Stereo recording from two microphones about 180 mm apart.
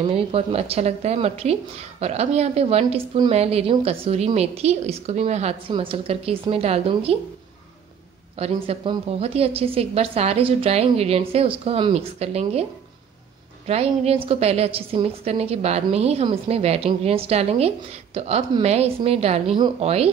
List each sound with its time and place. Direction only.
0.1 s a woman's voice: 30° right (ahead or behind)
8.4 s a woman's voice: 30° right (ahead or behind)
13.7 s a woman's voice: 35° right (ahead or behind)